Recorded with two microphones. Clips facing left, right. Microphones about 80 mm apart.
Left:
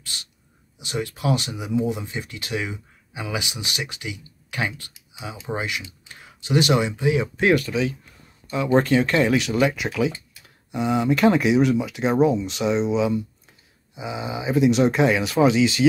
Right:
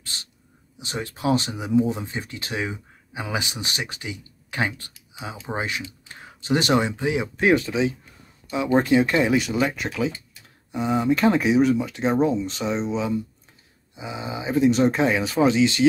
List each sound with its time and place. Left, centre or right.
0.0 s a sound: right
0.7 s speech: right
8.7 s speech: centre